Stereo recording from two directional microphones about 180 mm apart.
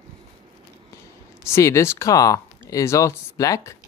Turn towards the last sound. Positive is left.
turn(degrees=15)  # may be behind; listen again after turning